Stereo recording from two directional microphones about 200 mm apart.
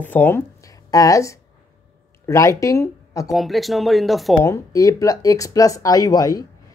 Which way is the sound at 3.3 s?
Centre (ahead or behind).